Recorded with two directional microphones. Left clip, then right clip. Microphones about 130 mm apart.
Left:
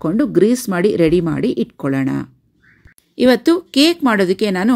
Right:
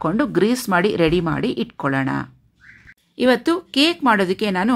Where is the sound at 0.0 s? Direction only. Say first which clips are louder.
Left 4 dB; 20° left (ahead or behind).